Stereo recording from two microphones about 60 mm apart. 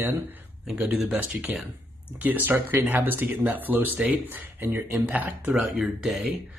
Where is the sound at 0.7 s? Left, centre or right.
Centre.